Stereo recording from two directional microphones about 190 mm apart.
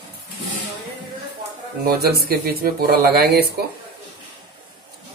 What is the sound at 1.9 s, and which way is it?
Speech, 55° right (ahead or behind).